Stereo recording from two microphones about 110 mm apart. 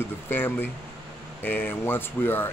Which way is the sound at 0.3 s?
20° left (ahead or behind).